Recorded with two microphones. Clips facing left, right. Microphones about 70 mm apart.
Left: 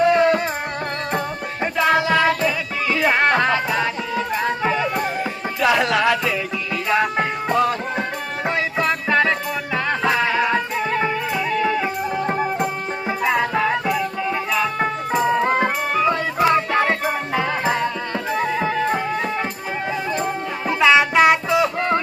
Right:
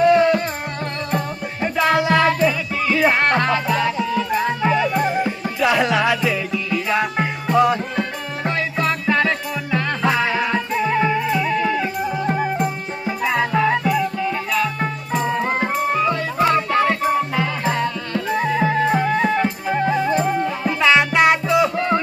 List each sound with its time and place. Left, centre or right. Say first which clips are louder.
0.0 s music: right 1 dB; centre
1.8 s music: right 1 dB; centre
7.5 s music: right 4 dB; centre
8.5 s music: even; centre
11.8 s music: even; left
13.2 s music: right 1 dB; centre
16.3 s music: right 1 dB; centre
18.6 s music: right 3 dB; centre
20.6 s music: left 2 dB; centre